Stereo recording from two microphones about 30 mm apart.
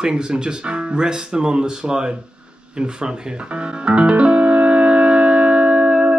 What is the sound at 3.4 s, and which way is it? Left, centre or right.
Music, right.